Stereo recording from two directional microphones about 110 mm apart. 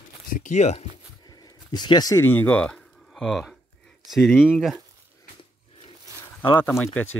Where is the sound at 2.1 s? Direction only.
20° left (ahead or behind); by 4.8 s centre (ahead or behind).